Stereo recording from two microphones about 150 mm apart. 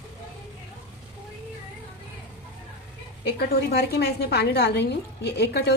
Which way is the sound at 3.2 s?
90° left.